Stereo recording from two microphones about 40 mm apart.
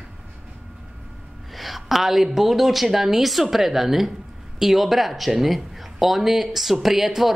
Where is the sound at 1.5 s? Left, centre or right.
Centre.